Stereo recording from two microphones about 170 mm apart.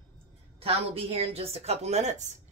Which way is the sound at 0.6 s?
35° right (ahead or behind).